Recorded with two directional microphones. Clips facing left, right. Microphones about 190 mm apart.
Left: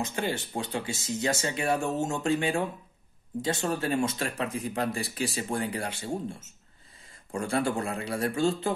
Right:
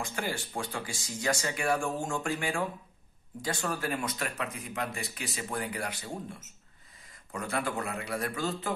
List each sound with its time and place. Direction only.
0.0 s speech: 25° left (ahead or behind)